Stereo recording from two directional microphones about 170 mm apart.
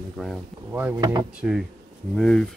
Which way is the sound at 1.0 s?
25° right (ahead or behind).